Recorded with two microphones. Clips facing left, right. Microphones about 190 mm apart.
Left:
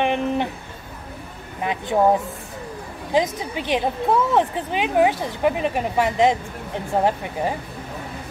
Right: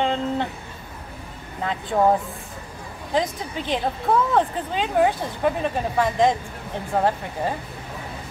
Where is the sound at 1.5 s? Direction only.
15° left (ahead or behind).